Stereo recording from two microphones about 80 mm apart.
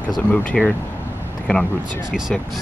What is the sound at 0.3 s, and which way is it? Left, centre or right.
Speech, centre.